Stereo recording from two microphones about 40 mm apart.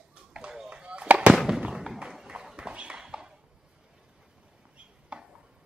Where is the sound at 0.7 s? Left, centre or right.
Right.